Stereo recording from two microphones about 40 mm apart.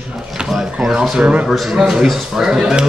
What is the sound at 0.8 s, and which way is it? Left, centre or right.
Speech, centre.